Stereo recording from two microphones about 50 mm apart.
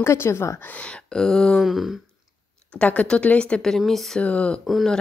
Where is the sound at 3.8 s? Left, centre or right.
Centre.